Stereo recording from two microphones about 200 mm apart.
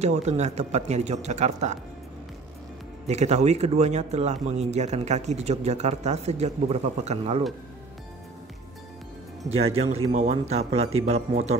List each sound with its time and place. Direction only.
0.0 s speech: 35° right (ahead or behind)
3.1 s speech: 35° right (ahead or behind)
9.5 s speech: 30° right (ahead or behind)